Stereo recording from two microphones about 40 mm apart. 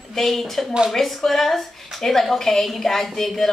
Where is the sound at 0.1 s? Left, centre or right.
Centre.